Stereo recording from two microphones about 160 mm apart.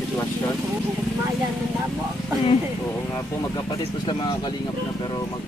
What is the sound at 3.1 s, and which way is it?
Speech, 20° left (ahead or behind).